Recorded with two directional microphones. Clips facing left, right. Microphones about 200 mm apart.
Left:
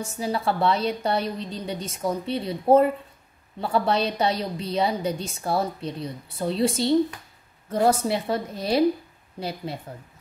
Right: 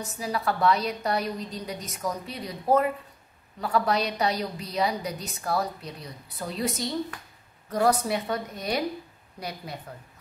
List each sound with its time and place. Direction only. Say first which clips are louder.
0.0 s a woman's voice: left 3 dB; 30° left (ahead or behind)